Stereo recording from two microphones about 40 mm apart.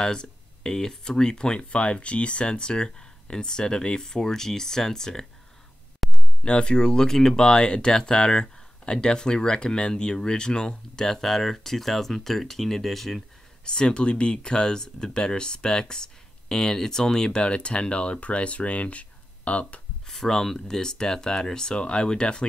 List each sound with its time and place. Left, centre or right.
0.0 s speech: centre
6.0 s a sound: centre
6.4 s speech: left; by 13.2 s centre
13.7 s speech: centre
20.1 s speech: centre